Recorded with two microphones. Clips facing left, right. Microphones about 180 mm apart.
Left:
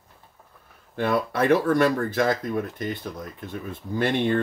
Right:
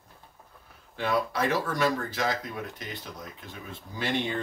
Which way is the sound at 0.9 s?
55° left (ahead or behind).